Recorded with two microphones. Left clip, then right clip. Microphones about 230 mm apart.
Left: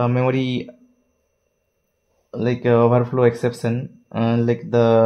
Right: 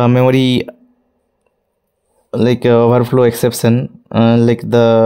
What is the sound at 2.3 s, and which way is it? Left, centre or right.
Speech, right.